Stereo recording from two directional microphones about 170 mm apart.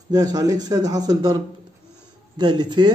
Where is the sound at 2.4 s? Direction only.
25° right (ahead or behind).